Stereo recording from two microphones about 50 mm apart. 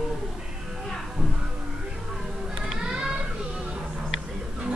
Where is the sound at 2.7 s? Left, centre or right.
Centre.